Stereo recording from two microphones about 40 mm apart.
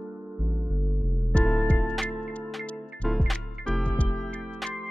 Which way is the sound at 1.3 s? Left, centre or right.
Left.